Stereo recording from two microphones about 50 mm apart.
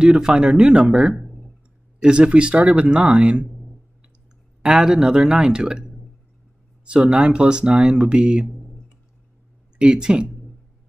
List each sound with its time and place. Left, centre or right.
0.0 s speech: centre
1.1 s a sound: centre
2.0 s speech: centre
4.6 s a man's voice: centre
9.8 s a man's voice: centre